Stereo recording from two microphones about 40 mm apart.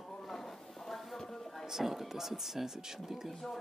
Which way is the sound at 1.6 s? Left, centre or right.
Centre.